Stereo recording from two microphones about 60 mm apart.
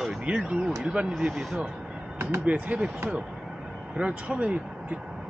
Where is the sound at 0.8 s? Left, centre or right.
Centre.